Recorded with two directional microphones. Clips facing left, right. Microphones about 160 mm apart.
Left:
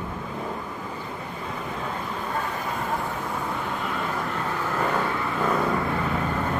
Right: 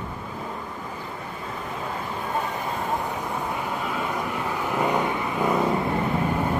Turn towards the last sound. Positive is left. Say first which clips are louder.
# right 2 dB
turn(degrees=-15)  # may be behind; listen again after turning